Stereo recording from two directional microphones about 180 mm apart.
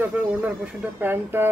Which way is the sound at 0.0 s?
10° right (ahead or behind).